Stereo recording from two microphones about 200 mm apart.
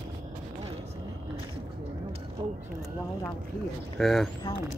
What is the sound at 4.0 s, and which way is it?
Speech, centre (ahead or behind).